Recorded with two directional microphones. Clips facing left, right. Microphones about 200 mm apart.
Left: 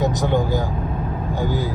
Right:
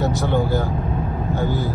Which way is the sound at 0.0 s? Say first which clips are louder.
Left 1 dB; 15° left (ahead or behind).